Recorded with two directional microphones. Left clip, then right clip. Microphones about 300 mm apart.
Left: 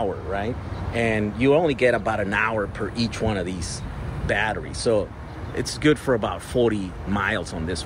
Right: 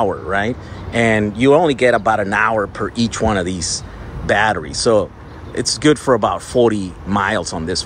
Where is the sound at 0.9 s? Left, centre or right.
Right.